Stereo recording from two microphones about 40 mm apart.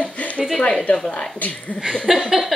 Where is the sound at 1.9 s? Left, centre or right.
Centre.